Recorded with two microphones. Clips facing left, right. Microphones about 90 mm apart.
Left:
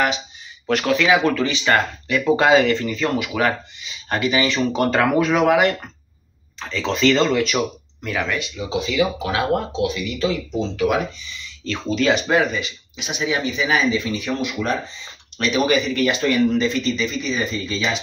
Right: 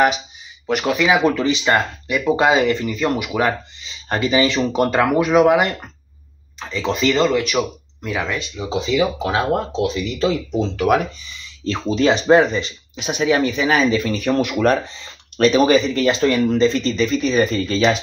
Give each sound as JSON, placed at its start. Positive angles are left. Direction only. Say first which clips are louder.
{"t": 0.7, "sound": "speech", "louder": "even", "side_deg": -15}
{"t": 4.6, "sound": "speech", "louder": "right 2 dB", "side_deg": -15}
{"t": 8.5, "sound": "speech", "louder": "right 3 dB", "side_deg": -25}
{"t": 11.6, "sound": "speech", "louder": "right 3 dB", "side_deg": -35}
{"t": 15.3, "sound": "speech", "louder": "right 5 dB", "side_deg": -40}